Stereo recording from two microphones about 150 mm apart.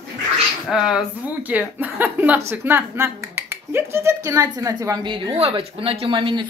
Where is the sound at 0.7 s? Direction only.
5° right (ahead or behind).